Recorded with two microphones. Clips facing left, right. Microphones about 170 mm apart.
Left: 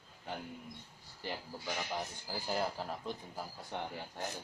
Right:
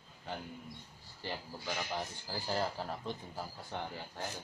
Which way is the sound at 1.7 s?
Centre (ahead or behind).